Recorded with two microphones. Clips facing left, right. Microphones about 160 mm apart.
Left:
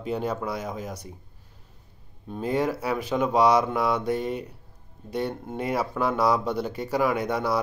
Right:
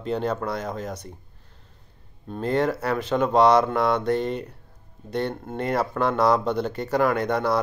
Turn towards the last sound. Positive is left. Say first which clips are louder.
# right 3 dB
turn(degrees=10)  # may be behind; listen again after turning